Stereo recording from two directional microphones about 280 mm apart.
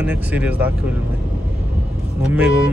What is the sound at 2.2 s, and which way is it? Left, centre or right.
Speech, centre.